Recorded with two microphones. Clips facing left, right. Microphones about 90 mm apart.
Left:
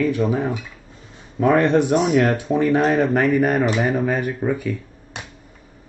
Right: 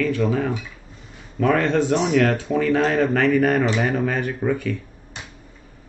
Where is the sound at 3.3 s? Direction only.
5° left (ahead or behind).